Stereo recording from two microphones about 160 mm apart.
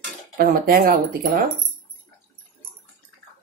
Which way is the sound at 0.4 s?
75° right (ahead or behind).